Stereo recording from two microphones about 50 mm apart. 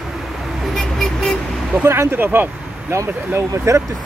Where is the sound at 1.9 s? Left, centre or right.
Right.